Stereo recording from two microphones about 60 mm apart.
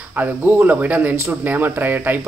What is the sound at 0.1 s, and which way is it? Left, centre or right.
Speech, right.